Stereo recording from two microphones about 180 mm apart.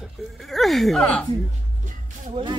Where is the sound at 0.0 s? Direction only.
Centre (ahead or behind).